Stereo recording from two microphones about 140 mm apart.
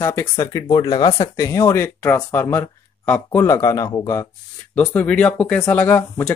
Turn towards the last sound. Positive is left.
turn(degrees=15)  # may be behind; listen again after turning